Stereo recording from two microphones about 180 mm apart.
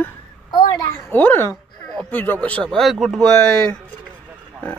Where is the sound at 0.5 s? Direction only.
25° left (ahead or behind).